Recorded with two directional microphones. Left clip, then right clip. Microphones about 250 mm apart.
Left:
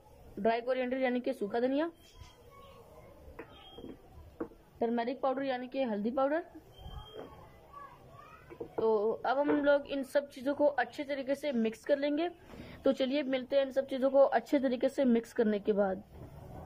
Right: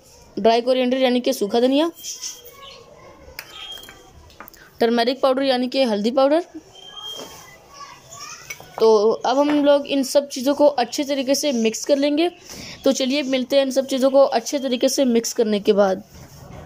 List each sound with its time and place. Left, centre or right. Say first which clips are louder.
0.4 s speech: right 14 dB; centre
4.7 s a woman's voice: right 15 dB; right
8.7 s speech: right 15 dB; centre